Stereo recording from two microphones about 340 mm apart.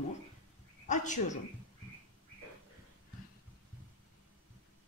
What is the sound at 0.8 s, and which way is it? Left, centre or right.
Speech, left.